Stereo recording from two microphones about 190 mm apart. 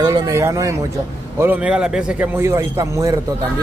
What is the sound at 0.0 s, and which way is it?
A man's voice, 20° right (ahead or behind).